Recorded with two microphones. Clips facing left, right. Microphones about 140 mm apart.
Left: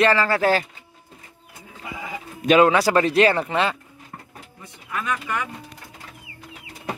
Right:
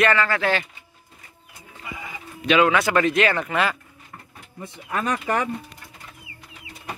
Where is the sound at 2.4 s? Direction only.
40° left (ahead or behind).